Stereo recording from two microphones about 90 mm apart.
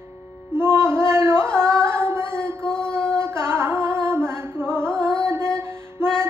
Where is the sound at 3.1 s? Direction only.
25° right (ahead or behind).